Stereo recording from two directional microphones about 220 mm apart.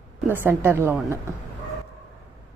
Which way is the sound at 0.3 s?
10° right (ahead or behind).